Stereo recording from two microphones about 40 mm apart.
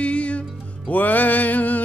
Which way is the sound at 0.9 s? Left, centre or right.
Left.